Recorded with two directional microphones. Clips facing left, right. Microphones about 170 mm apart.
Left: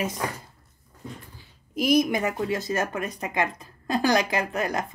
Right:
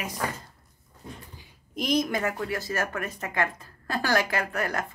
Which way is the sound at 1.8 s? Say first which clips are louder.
Left 4 dB; 10° left (ahead or behind).